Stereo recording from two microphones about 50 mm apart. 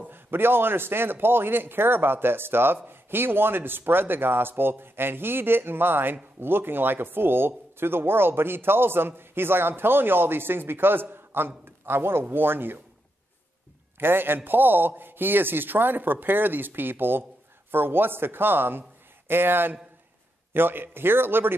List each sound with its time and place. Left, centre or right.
0.1 s speech: right
13.9 s speech: right